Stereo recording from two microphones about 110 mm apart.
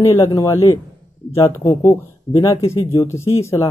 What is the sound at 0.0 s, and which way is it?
Speech, 25° left (ahead or behind).